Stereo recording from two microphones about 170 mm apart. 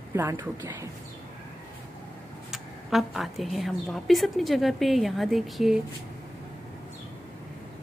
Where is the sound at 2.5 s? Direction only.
Centre (ahead or behind).